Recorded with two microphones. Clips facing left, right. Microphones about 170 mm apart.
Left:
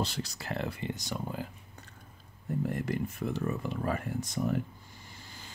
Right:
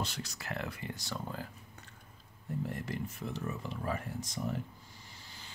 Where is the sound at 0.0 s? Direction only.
35° left (ahead or behind); by 1.5 s 15° left (ahead or behind).